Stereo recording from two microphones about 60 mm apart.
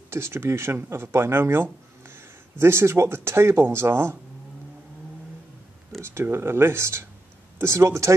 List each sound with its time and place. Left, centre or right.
0.1 s speech: right
5.9 s speech: right